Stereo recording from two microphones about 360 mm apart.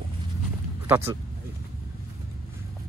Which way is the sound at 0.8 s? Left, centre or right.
Centre.